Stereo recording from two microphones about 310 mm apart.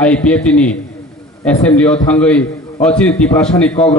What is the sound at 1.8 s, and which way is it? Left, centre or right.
A man's voice, centre.